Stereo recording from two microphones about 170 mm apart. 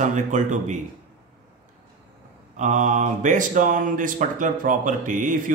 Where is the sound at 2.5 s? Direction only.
45° right (ahead or behind).